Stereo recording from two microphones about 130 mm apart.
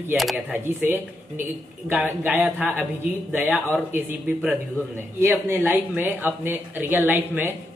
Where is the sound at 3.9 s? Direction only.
15° right (ahead or behind).